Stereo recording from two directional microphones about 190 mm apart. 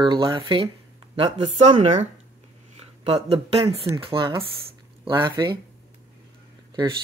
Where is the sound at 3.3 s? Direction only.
30° right (ahead or behind).